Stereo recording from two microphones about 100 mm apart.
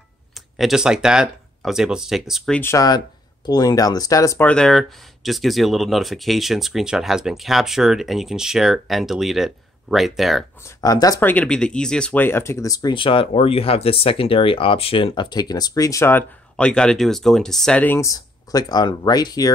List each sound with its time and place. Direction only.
0.6 s speech: 5° right (ahead or behind)
2.6 s speech: 35° left (ahead or behind)
4.4 s speech: 10° left (ahead or behind)
10.8 s speech: 40° left (ahead or behind)
11.1 s speech: 20° left (ahead or behind)
11.4 s speech: 10° left (ahead or behind); by 12.9 s 35° left (ahead or behind)
12.9 s speech: 60° left (ahead or behind); by 16.3 s 25° left (ahead or behind)
16.5 s speech: 10° left (ahead or behind)
17.8 s speech: 25° left (ahead or behind)
18.1 s speech: 40° left (ahead or behind)